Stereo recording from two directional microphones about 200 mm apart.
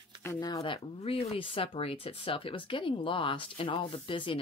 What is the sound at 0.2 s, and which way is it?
Speech, 15° left (ahead or behind).